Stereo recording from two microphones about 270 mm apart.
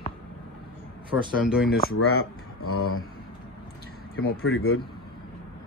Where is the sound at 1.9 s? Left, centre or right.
Left.